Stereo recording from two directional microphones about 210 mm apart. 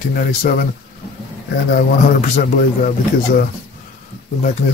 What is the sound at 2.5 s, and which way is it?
Speech, 40° left (ahead or behind).